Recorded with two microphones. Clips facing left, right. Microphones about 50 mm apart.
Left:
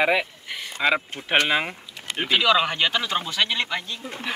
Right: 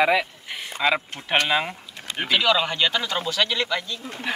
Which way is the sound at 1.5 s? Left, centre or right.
Centre.